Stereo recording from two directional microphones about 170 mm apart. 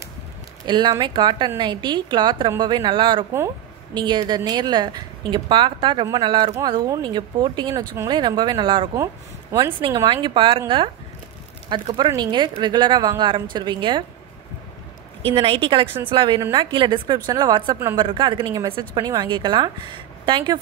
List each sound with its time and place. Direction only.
0.7 s a woman's voice: 25° right (ahead or behind)
9.8 s a woman's voice: 30° right (ahead or behind)
11.7 s a woman's voice: 25° right (ahead or behind)
15.2 s a woman's voice: 30° right (ahead or behind)